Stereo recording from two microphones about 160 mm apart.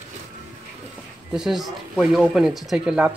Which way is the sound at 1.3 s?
Centre (ahead or behind).